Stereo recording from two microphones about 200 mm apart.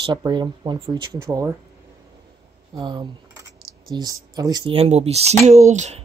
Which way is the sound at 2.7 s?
20° right (ahead or behind).